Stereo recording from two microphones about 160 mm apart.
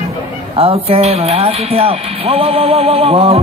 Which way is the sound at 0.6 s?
35° right (ahead or behind).